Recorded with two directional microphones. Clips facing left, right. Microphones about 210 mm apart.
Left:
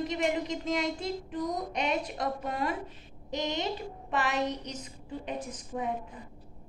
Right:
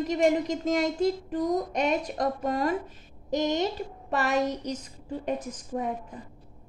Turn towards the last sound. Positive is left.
turn(degrees=-45)  # may be behind; listen again after turning